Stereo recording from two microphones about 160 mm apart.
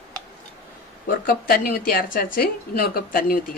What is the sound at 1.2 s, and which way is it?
A woman's voice, 65° left (ahead or behind).